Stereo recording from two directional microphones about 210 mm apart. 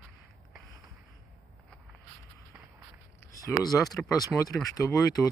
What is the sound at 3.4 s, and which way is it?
Speech, 15° left (ahead or behind).